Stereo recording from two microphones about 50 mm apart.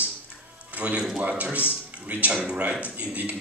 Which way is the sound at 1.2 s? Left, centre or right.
Right.